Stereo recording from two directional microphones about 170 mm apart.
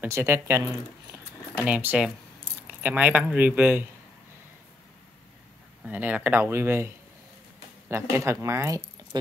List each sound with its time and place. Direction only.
0.0 s speech: 15° right (ahead or behind)
5.9 s speech: 10° right (ahead or behind)
7.9 s speech: 15° right (ahead or behind)